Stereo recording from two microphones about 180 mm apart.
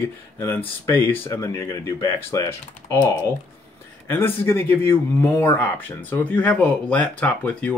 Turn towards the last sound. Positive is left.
turn(degrees=5)  # may be behind; listen again after turning